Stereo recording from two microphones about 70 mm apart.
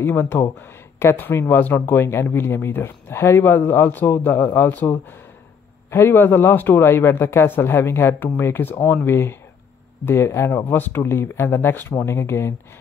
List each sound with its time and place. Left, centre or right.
0.0 s speech: left